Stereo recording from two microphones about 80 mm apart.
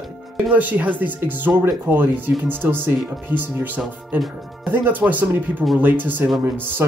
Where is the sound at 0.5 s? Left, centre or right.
Centre.